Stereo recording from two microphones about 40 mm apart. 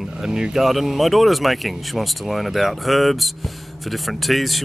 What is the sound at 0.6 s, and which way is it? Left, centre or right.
Speech, centre.